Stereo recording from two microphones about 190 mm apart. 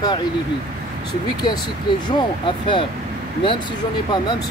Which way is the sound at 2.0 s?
25° left (ahead or behind).